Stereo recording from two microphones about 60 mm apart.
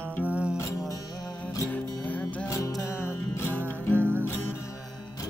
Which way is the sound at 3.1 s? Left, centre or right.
Left.